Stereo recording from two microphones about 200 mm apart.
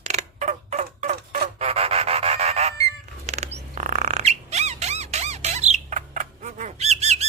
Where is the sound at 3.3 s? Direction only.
35° right (ahead or behind).